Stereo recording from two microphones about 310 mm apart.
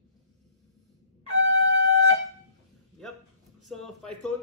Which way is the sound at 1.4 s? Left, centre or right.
Right.